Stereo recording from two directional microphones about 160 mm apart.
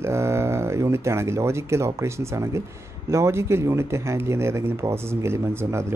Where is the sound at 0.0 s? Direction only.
15° right (ahead or behind).